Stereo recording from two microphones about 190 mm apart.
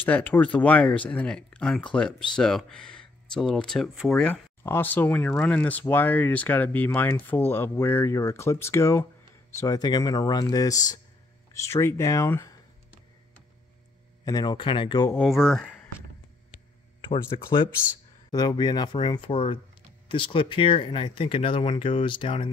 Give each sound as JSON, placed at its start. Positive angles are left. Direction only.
{"t": 0.0, "sound": "speech", "side_deg": 10}
{"t": 14.2, "sound": "speech", "side_deg": 20}
{"t": 15.1, "sound": "speech", "side_deg": 0}
{"t": 18.3, "sound": "speech", "side_deg": 20}